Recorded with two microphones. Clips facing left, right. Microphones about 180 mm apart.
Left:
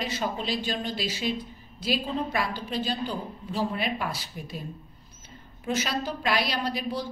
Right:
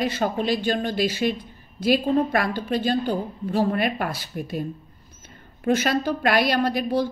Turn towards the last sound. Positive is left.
turn(degrees=-55)  # may be behind; listen again after turning